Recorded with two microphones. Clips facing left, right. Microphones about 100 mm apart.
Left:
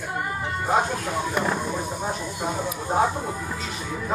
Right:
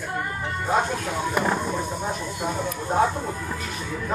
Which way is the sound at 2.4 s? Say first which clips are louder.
Even; 10° left (ahead or behind).